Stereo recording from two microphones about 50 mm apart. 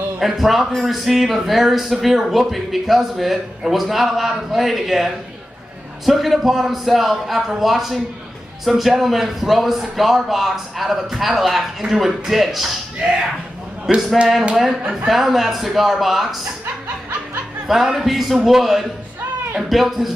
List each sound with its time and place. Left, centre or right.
0.2 s a man's voice: centre
13.0 s speech: centre
13.9 s a man's voice: centre
15.0 s a man's voice: centre
17.6 s a man's voice: centre